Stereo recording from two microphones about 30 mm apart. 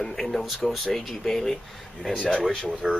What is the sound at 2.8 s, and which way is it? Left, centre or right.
Speech, centre.